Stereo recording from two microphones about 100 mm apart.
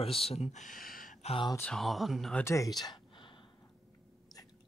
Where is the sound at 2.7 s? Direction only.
40° left (ahead or behind).